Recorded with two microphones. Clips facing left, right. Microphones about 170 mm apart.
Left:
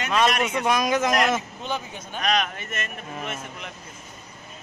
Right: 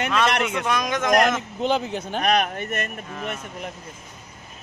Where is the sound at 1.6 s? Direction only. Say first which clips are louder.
Right 8 dB; 80° right.